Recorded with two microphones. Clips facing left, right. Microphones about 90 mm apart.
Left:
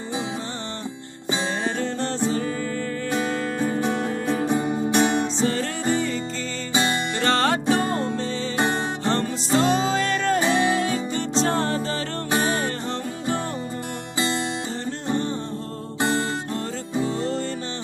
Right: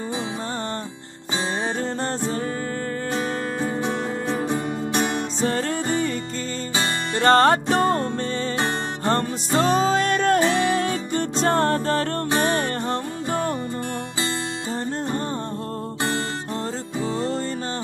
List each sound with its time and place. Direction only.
1.8 s music: 45° right (ahead or behind)
3.9 s music: 15° right (ahead or behind)
4.5 s music: 5° left (ahead or behind)
5.4 s music: 45° right (ahead or behind)
7.2 s music: 45° right (ahead or behind)
10.4 s music: 5° left (ahead or behind)
10.8 s music: 50° right (ahead or behind)
16.0 s music: 5° left (ahead or behind)
17.0 s music: 40° right (ahead or behind)